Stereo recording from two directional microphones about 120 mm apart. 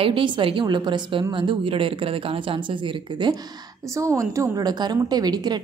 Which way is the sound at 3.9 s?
25° right (ahead or behind).